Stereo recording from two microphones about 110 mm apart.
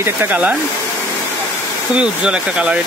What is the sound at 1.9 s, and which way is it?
Speech, 10° right (ahead or behind).